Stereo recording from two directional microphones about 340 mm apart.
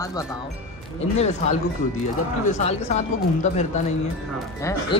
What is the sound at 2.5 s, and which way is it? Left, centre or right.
Speech, centre.